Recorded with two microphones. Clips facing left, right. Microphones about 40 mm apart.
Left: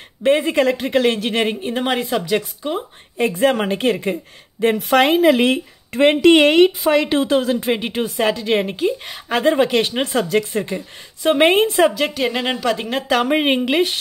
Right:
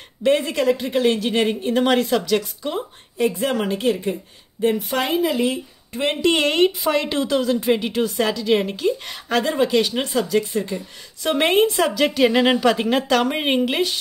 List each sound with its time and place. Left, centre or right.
0.2 s a woman's voice: left
0.6 s a woman's voice: left
1.5 s a woman's voice: centre
3.2 s a woman's voice: left
4.6 s speech: left
5.3 s speech: left
5.9 s a woman's voice: left
8.5 s a woman's voice: centre
9.4 s a woman's voice: left
11.9 s speech: centre
13.1 s speech: centre